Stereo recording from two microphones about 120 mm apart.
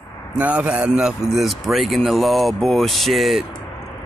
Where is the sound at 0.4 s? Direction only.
10° right (ahead or behind).